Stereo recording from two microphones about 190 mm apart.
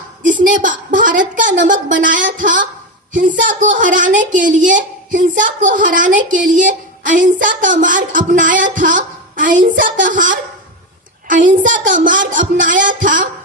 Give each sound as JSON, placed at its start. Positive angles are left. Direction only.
{"t": 0.2, "sound": "a woman's voice", "side_deg": -45}